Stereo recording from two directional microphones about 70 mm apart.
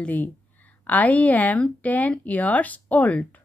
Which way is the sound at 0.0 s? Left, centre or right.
Left.